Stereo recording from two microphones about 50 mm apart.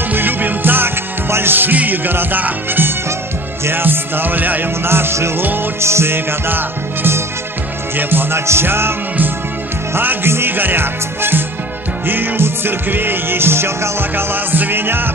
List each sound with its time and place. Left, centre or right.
0.1 s music: right
4.8 s music: right
8.5 s music: right
9.9 s music: right
14.1 s music: right